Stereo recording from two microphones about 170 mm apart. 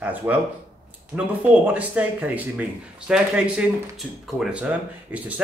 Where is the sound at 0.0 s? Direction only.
10° right (ahead or behind).